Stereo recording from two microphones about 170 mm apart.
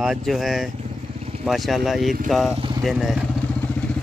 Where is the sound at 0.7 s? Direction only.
35° right (ahead or behind).